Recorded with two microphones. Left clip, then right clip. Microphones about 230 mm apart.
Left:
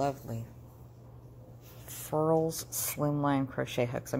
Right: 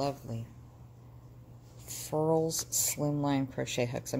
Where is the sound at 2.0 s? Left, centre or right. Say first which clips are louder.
Left 1 dB; centre.